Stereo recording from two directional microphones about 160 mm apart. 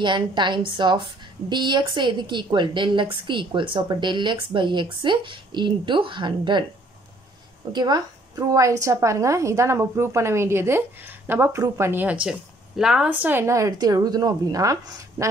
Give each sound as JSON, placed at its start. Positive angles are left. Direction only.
{"t": 0.0, "sound": "a woman's voice", "side_deg": -30}
{"t": 7.7, "sound": "a woman's voice", "side_deg": -25}